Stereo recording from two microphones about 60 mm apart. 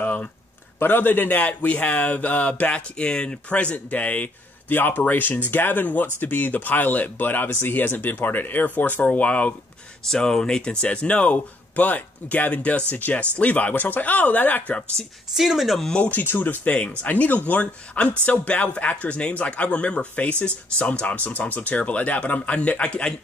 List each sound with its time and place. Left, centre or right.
0.0 s a sound: left
0.7 s speech: left
10.0 s speech: centre; by 14.9 s left
15.3 s speech: centre
16.1 s speech: left